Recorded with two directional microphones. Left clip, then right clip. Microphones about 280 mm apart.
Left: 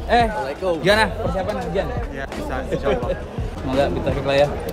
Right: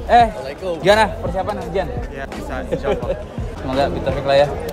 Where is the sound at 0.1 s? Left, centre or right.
Centre.